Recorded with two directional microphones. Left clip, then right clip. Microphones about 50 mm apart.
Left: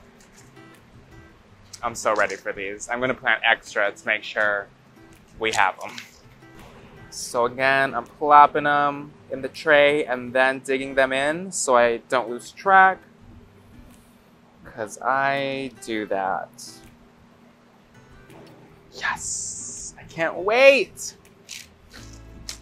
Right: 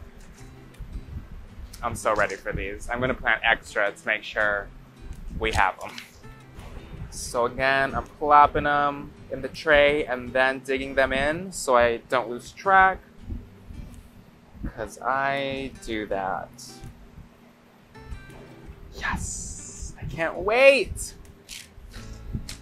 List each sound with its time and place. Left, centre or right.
1.7 s speech: left
7.1 s speech: left
14.8 s speech: left
16.5 s speech: left
18.9 s music: left
20.4 s a sound: left